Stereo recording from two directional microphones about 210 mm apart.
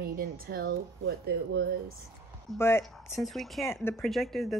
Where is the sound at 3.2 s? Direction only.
Centre (ahead or behind).